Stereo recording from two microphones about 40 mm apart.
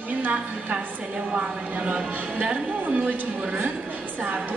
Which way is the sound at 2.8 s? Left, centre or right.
Right.